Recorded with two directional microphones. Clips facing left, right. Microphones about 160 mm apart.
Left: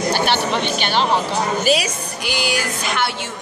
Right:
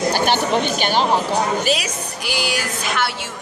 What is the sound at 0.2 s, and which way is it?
Speech, 45° right (ahead or behind).